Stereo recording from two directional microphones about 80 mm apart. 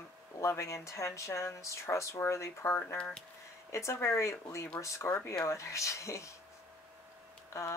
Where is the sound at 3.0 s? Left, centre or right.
Centre.